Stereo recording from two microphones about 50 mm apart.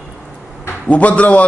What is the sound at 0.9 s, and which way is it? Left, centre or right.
Speech, left.